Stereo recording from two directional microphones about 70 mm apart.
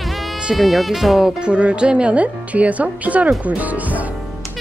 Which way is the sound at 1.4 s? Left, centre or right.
Centre.